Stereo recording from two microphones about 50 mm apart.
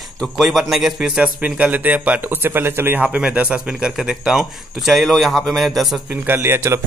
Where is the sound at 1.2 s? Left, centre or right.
Right.